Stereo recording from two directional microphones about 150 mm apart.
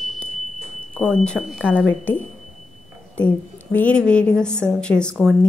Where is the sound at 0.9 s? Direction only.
5° left (ahead or behind).